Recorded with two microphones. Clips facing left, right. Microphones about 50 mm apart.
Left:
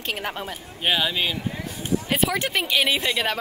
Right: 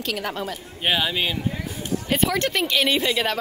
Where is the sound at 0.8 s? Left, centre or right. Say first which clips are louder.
Even; centre.